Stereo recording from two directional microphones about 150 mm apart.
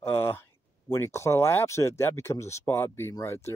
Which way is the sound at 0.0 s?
15° left (ahead or behind).